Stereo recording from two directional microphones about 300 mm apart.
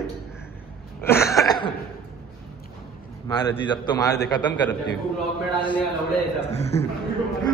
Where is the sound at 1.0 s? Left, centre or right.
Centre.